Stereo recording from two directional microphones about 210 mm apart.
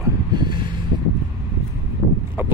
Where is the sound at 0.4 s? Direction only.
20° right (ahead or behind).